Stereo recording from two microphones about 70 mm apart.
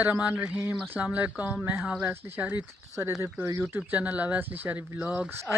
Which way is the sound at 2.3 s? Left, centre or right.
Right.